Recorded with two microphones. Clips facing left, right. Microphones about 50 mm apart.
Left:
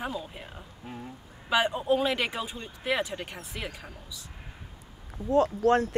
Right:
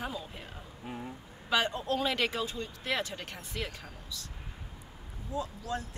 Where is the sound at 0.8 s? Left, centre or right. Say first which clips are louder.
Right 1 dB; centre.